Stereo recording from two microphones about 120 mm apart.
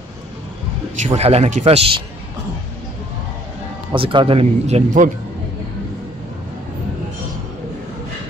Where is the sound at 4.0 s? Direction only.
50° right (ahead or behind); by 5.1 s 80° right.